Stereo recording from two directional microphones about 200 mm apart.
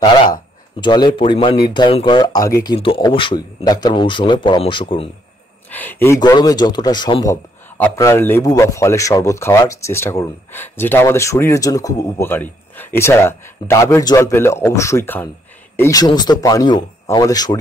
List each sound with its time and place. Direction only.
0.0 s a man's voice: 20° left (ahead or behind)
5.7 s a man's voice: 10° left (ahead or behind)